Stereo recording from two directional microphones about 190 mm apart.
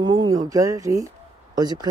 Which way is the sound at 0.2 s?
20° right (ahead or behind).